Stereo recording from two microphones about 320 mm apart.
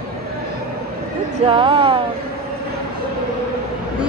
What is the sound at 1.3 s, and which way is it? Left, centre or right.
Speech, centre.